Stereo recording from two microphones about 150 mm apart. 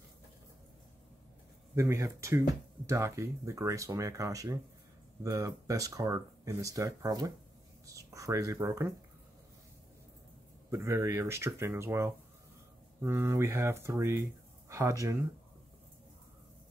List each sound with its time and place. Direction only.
1.8 s speech: 20° right (ahead or behind)
10.7 s speech: 20° right (ahead or behind)